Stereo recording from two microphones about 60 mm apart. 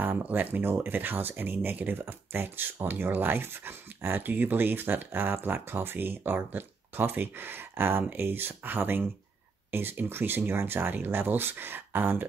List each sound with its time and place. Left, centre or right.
0.0 s speech: right